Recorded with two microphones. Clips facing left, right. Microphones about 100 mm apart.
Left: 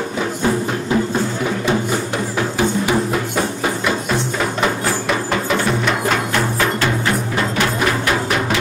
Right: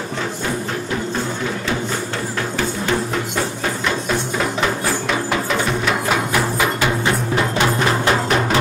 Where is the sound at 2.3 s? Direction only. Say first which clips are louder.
Left 6 dB; 15° left (ahead or behind); by 6.9 s 10° right (ahead or behind).